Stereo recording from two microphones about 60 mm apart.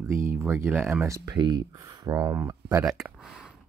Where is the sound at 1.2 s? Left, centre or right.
Right.